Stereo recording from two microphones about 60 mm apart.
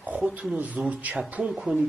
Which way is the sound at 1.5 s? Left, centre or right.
Centre.